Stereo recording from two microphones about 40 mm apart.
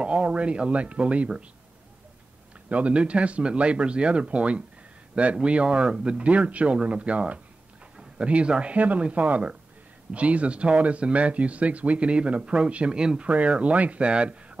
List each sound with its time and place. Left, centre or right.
0.0 s speech: right
2.7 s speech: right
13.3 s speech: right